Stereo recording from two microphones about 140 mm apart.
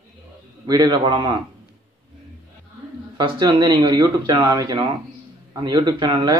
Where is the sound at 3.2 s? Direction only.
35° right (ahead or behind).